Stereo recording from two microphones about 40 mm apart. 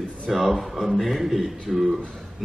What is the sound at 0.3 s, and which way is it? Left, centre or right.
A man's voice, centre.